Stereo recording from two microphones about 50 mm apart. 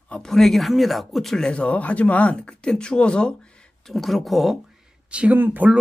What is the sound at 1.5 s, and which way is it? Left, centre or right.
Speech, left.